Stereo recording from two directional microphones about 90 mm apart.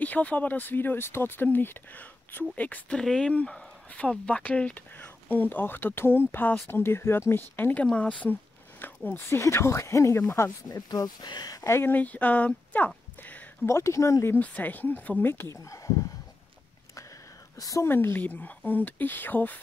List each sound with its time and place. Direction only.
0.0 s speech: 15° left (ahead or behind)
10.7 s speech: 45° left (ahead or behind)
11.6 s speech: 30° left (ahead or behind)
13.7 s speech: 30° left (ahead or behind)
14.4 s speech: 20° left (ahead or behind)
15.5 s speech: 35° left (ahead or behind)
17.6 s a woman's voice: 40° left (ahead or behind)
17.8 s speech: 25° left (ahead or behind)